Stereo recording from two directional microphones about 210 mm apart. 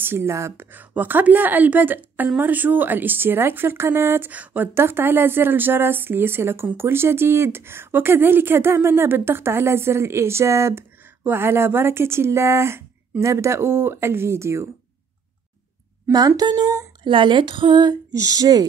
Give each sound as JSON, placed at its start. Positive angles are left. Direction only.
{"t": 0.0, "sound": "speech", "side_deg": -10}
{"t": 16.1, "sound": "speech", "side_deg": -15}